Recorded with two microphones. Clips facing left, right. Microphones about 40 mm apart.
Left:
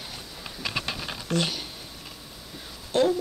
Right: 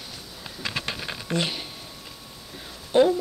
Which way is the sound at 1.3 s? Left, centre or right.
Right.